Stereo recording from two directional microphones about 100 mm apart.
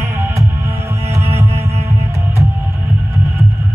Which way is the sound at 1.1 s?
25° right (ahead or behind).